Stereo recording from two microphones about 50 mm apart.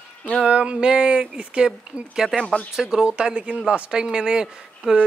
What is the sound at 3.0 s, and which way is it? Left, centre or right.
Speech, right.